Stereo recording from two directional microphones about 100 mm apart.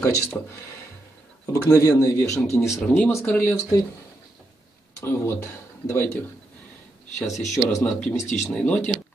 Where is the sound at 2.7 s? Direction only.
30° left (ahead or behind).